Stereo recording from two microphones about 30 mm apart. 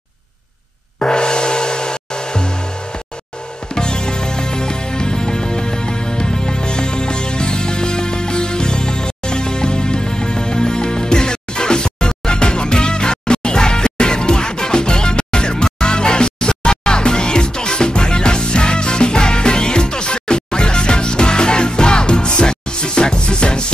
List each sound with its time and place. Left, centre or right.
0.9 s gong: left
3.7 s music: left